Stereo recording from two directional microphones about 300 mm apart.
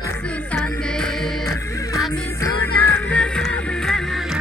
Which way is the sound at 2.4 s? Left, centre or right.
Centre.